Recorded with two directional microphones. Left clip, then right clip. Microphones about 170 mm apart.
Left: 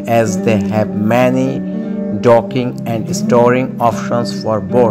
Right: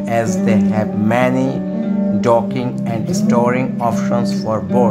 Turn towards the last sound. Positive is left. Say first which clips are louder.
# left 3 dB
turn(degrees=25)  # may be behind; listen again after turning